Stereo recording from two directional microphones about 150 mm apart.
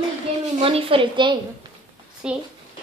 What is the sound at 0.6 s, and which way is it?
Speech, 40° right (ahead or behind).